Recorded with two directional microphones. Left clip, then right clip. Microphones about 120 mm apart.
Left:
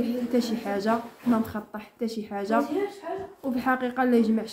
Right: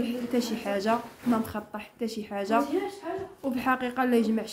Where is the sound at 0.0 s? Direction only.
15° right (ahead or behind).